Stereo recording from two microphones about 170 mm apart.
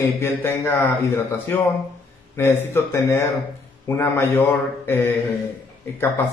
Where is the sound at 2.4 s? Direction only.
15° left (ahead or behind).